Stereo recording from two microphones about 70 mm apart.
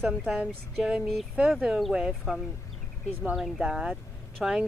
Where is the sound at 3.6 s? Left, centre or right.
Centre.